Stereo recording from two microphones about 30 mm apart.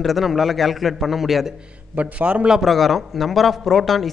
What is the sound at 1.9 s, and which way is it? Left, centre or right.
Speech, right.